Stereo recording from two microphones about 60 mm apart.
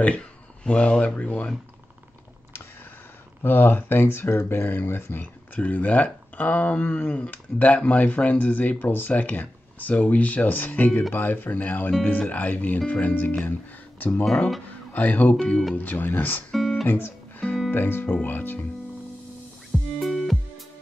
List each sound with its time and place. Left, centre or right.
0.7 s speech: centre
3.4 s speech: left
13.9 s a sound: left
14.7 s speech: left
16.5 s guitar: centre
16.8 s speech: left
20.0 s music: centre